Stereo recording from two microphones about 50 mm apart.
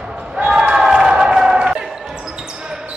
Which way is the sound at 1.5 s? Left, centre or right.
Right.